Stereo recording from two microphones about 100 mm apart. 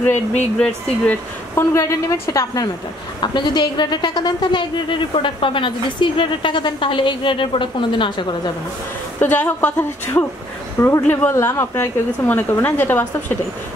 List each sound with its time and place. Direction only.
0.0 s speech: 20° left (ahead or behind)
1.7 s a woman's voice: 30° left (ahead or behind)
3.2 s a woman's voice: 50° left (ahead or behind)
9.2 s a woman's voice: 15° left (ahead or behind)